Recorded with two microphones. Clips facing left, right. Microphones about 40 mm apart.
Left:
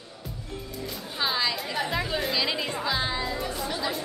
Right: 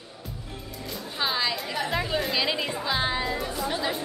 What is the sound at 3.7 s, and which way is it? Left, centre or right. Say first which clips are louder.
Chatter: right 3 dB; centre.